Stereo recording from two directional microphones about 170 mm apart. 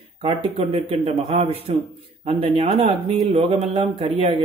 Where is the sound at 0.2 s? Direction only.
35° right (ahead or behind).